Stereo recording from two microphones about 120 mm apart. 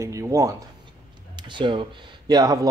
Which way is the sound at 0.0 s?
25° right (ahead or behind).